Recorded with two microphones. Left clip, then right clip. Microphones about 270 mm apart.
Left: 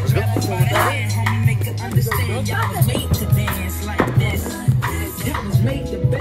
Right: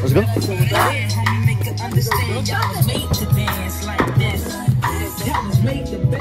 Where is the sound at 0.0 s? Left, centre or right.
Centre.